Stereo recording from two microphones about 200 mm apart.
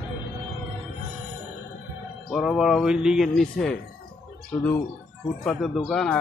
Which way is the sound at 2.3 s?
Centre (ahead or behind).